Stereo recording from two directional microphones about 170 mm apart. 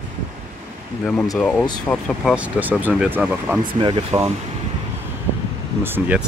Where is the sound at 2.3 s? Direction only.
10° right (ahead or behind).